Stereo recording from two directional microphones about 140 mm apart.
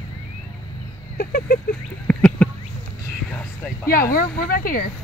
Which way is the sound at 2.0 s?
10° left (ahead or behind).